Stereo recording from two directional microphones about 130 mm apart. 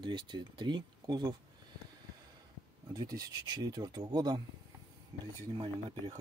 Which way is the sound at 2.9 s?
30° right (ahead or behind).